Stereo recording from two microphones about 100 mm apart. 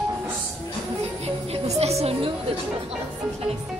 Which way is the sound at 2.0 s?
75° right (ahead or behind).